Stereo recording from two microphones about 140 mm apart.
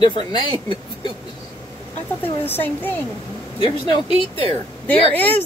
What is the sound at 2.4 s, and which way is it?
Speech, 15° left (ahead or behind).